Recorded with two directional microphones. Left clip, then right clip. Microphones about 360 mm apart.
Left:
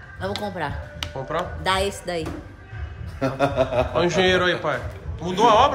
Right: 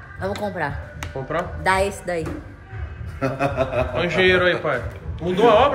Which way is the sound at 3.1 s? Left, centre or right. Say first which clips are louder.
Left 1 dB; left.